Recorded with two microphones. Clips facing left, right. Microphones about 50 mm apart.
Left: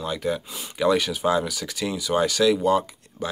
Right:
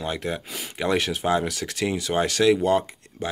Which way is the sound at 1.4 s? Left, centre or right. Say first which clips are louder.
Right 2 dB; right.